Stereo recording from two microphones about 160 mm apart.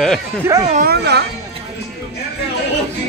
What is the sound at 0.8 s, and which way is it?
Speech, 90° right.